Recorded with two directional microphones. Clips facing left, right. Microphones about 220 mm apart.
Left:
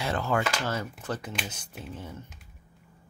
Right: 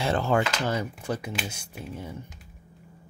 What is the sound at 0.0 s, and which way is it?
Speech, 25° right (ahead or behind).